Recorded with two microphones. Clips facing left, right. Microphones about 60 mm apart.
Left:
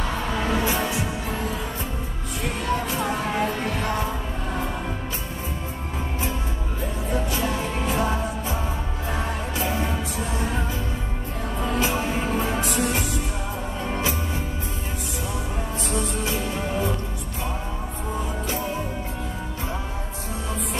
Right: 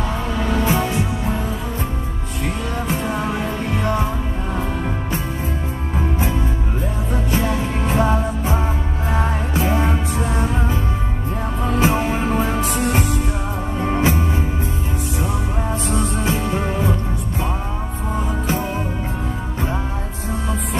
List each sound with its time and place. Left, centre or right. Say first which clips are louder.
0.7 s music: right 5 dB; right
7.2 s music: right 5 dB; right
15.9 s music: right 4 dB; right